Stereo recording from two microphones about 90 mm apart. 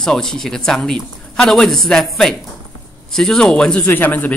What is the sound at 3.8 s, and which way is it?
Speech, 20° left (ahead or behind).